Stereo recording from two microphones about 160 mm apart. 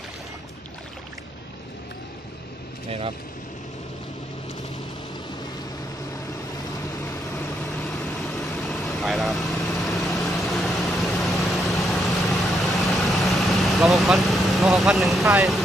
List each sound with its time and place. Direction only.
6.5 s vehicle: 25° left (ahead or behind)
7.9 s vehicle: centre (ahead or behind)